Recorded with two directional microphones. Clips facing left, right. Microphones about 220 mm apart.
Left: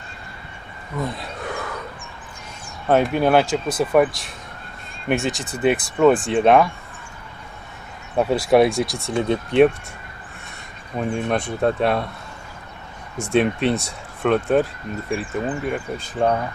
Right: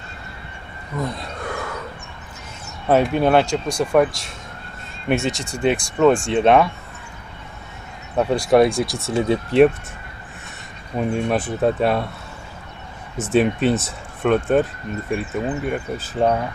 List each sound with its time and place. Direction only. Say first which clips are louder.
0.9 s a sound: right 1 dB; centre (ahead or behind)
2.9 s speech: right 1 dB; centre (ahead or behind)
8.2 s speech: right 1 dB; centre (ahead or behind)
11.0 s speech: right 2 dB; 5° right (ahead or behind)
13.2 s speech: right 1 dB; centre (ahead or behind)